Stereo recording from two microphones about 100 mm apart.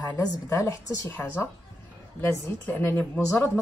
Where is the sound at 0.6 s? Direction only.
30° left (ahead or behind).